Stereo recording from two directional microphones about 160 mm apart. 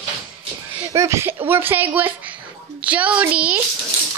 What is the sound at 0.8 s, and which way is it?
A child's voice, 20° right (ahead or behind).